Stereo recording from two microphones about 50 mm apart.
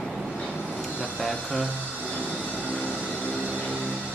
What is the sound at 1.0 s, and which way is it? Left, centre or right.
Speech, centre.